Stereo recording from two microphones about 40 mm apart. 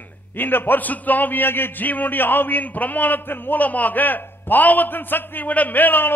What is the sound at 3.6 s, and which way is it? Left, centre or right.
A man's voice, left.